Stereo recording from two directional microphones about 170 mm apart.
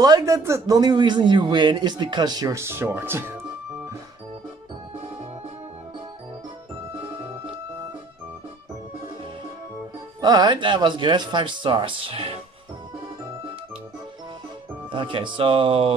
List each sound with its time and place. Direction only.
0.0 s a man's voice: 20° right (ahead or behind)
7.0 s music: 30° right (ahead or behind)
10.2 s a man's voice: 25° right (ahead or behind)
14.9 s speech: 30° right (ahead or behind)